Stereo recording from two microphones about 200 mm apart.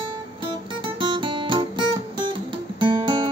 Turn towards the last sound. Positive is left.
turn(degrees=-25)  # may be behind; listen again after turning